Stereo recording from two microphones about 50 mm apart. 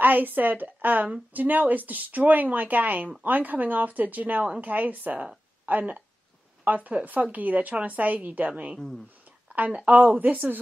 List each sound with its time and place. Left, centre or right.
0.0 s speech: right
9.7 s a woman's voice: right
9.9 s speech: right